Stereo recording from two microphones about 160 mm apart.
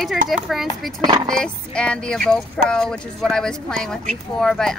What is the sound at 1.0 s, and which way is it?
Speech, 30° right (ahead or behind).